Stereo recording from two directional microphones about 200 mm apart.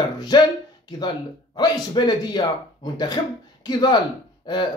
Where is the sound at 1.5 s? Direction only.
20° left (ahead or behind).